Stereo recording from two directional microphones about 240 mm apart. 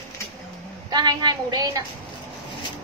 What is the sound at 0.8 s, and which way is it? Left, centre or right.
Speech, centre.